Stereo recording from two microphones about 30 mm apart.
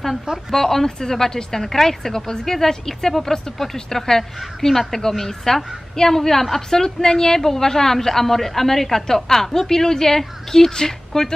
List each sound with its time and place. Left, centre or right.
0.5 s a woman's voice: centre